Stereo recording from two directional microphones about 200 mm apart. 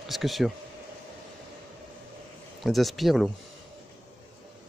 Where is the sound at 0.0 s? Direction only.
Centre (ahead or behind).